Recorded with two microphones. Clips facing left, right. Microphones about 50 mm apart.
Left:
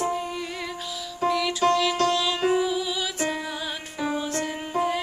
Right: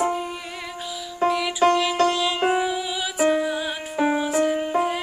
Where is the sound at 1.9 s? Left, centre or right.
Right.